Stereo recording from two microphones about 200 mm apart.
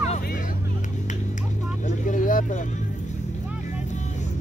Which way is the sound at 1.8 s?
40° left (ahead or behind).